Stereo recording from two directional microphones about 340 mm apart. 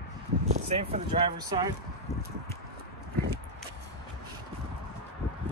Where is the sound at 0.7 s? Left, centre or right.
Centre.